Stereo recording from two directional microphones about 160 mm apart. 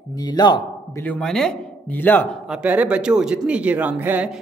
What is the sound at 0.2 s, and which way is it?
Speech, 25° left (ahead or behind).